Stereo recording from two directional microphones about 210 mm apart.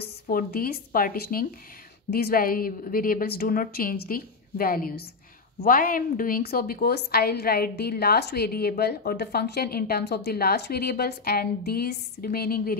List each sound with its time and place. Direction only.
0.0 s a woman's voice: 45° left (ahead or behind)